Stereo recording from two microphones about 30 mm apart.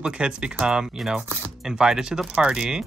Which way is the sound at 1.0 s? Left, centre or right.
Centre.